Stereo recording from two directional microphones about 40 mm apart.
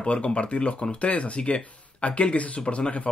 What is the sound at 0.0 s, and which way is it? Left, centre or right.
Speech, left.